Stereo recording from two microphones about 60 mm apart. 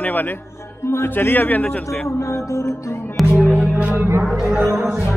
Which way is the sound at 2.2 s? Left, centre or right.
Left.